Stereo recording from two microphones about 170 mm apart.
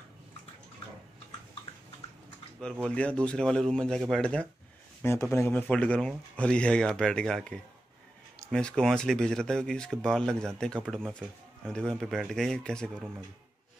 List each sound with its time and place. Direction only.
2.6 s speech: 5° left (ahead or behind)